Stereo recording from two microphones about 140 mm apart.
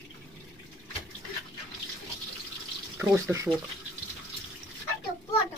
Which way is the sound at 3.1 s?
20° right (ahead or behind).